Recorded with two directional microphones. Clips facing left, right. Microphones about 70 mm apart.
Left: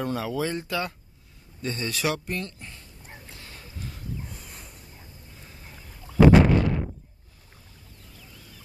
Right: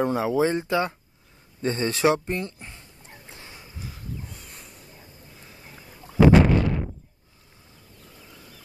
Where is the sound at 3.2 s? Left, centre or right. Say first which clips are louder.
Right 1 dB; right.